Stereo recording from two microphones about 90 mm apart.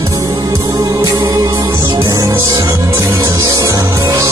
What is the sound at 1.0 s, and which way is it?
Music, 35° right (ahead or behind).